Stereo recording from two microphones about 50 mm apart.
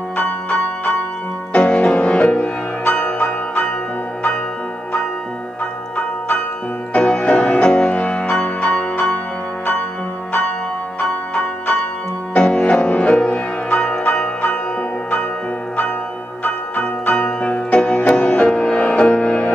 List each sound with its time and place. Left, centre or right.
0.2 s music: left
3.2 s music: left
6.9 s music: left
11.0 s music: left
16.4 s music: left
18.4 s music: centre